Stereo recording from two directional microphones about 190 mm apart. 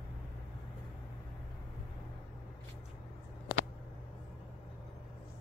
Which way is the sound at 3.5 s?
50° left (ahead or behind).